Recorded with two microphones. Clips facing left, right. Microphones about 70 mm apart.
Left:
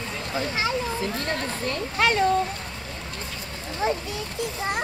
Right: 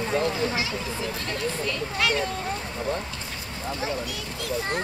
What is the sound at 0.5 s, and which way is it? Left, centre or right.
Speech, left.